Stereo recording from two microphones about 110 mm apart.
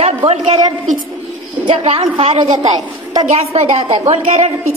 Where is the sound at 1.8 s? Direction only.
60° right (ahead or behind).